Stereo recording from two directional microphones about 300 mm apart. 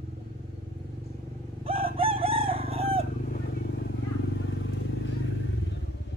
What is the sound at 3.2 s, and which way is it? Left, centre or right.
Vehicle, left.